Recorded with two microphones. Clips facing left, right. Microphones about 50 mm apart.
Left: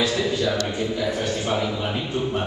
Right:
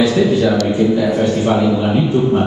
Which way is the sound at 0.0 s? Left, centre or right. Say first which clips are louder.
Right 9 dB; right.